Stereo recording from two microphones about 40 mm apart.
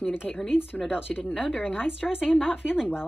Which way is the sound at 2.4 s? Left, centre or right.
Right.